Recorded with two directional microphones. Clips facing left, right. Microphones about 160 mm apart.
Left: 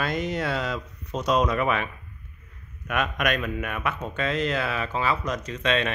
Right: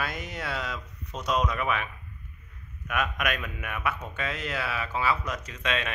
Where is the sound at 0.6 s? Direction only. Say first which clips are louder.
Left 6 dB; 30° left (ahead or behind).